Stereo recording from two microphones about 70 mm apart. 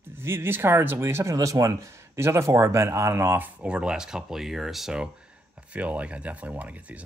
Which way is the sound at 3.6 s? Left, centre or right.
Centre.